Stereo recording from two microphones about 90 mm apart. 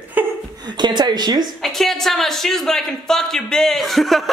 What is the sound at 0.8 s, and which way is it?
Speech, 55° right (ahead or behind).